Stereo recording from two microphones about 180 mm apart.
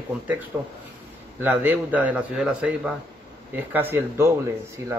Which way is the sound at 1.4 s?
10° right (ahead or behind).